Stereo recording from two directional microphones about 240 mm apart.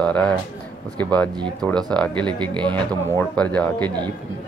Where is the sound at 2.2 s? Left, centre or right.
Centre.